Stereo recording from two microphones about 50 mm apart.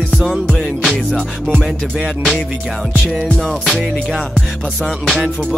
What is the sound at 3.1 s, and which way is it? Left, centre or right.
Music, centre.